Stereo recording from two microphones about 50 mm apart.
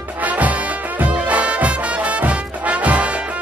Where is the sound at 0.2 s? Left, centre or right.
Right.